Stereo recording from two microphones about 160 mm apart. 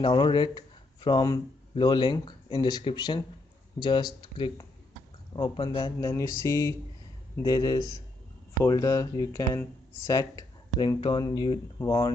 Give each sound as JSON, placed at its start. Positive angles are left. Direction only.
{"t": 0.0, "sound": "speech", "side_deg": 30}